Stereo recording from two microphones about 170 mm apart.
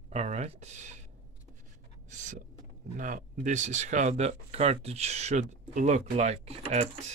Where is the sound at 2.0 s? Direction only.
45° right (ahead or behind).